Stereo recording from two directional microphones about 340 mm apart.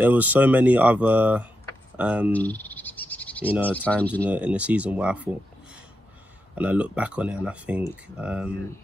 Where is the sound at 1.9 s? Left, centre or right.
Centre.